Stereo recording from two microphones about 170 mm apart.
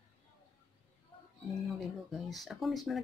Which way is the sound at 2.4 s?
Centre (ahead or behind).